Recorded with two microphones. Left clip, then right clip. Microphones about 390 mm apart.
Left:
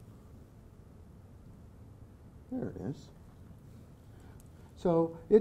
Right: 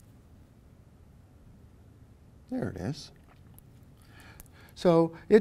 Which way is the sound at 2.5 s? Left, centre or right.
Right.